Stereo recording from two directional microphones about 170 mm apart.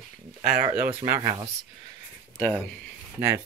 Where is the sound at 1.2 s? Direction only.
20° right (ahead or behind).